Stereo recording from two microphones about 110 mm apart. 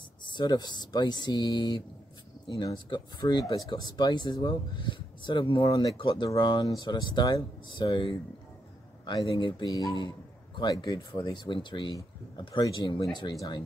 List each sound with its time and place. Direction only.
0.2 s speech: 45° left (ahead or behind)
5.6 s speech: 30° left (ahead or behind)
5.9 s speech: 45° left (ahead or behind)
9.7 s speech: 30° left (ahead or behind)